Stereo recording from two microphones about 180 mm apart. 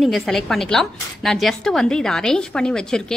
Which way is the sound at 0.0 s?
Centre (ahead or behind).